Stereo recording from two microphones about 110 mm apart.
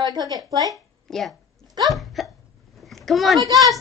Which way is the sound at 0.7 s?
Centre (ahead or behind).